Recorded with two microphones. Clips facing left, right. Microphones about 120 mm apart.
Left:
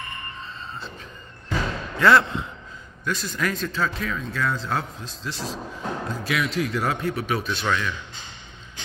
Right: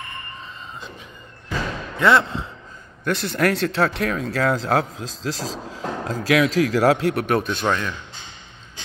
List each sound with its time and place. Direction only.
2.0 s speech: 25° right (ahead or behind)
3.1 s speech: 65° right (ahead or behind)
7.6 s speech: 35° right (ahead or behind)